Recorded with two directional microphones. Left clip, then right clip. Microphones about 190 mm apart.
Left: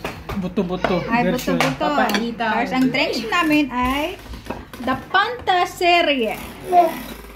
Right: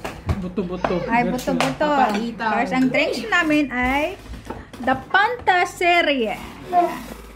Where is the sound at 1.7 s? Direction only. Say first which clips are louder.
Right 1 dB; 20° right (ahead or behind).